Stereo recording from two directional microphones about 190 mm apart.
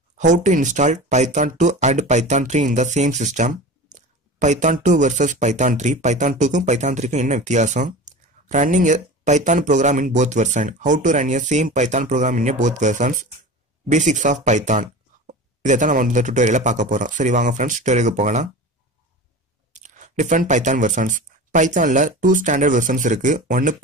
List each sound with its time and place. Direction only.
0.2 s speech: 40° right (ahead or behind)
19.7 s speech: 40° right (ahead or behind)